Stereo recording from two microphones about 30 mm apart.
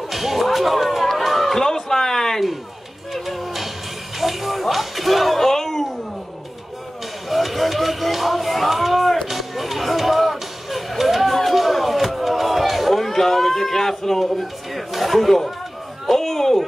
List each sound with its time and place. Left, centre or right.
0.1 s music: centre
1.6 s a sound: centre
3.1 s music: centre
7.2 s music: centre
11.4 s chop: centre
14.2 s a sound: centre